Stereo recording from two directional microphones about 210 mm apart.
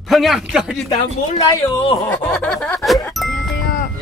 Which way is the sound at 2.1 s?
5° left (ahead or behind).